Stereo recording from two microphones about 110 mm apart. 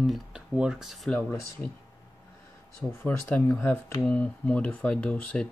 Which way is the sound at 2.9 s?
20° left (ahead or behind).